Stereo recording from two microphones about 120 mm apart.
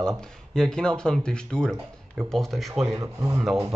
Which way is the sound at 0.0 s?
5° left (ahead or behind).